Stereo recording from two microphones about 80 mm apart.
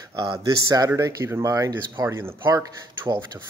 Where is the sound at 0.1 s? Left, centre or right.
Right.